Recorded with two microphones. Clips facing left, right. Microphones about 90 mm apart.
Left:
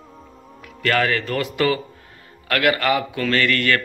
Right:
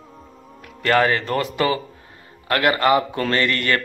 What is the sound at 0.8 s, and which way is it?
A man's voice, 25° right (ahead or behind).